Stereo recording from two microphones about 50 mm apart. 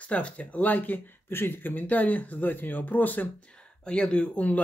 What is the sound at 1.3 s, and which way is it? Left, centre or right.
Speech, left.